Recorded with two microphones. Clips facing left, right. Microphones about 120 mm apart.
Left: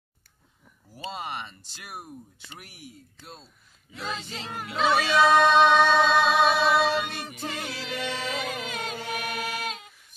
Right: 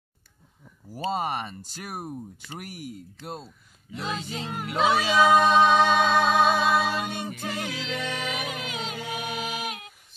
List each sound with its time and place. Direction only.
0.9 s speech: 40° right (ahead or behind)
4.0 s female singing: 15° right (ahead or behind)
7.4 s music: 10° right (ahead or behind)